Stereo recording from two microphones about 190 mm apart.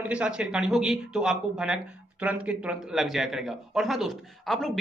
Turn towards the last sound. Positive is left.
turn(degrees=0)  # may be behind; listen again after turning